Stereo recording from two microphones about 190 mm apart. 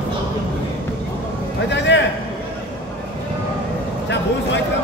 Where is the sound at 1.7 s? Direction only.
65° left (ahead or behind).